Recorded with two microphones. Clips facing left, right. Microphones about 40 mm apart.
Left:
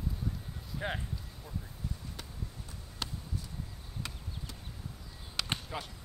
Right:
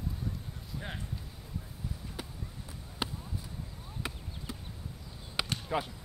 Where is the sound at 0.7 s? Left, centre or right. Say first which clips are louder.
Left 5 dB; centre.